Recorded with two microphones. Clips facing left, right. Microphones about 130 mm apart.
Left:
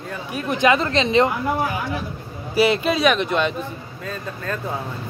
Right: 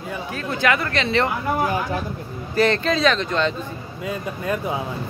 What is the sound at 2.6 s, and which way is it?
Speech, 10° left (ahead or behind).